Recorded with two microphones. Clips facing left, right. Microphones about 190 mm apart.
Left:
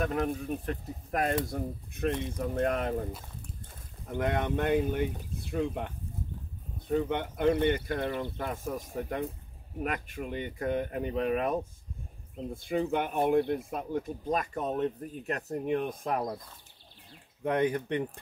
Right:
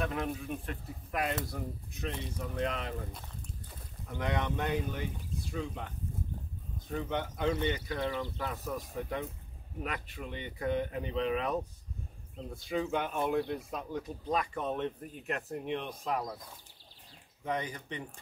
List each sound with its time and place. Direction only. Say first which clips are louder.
0.0 s speech: left 4 dB; 45° left (ahead or behind)
4.1 s speech: left 4 dB; 50° left (ahead or behind)
12.5 s speech: left 3 dB; 50° left (ahead or behind)
17.4 s speech: left 8 dB; 60° left (ahead or behind)